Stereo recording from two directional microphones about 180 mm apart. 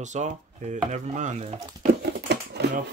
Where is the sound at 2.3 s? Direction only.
70° right (ahead or behind).